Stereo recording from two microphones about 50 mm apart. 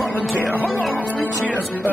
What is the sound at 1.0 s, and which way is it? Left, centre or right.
Speech, left.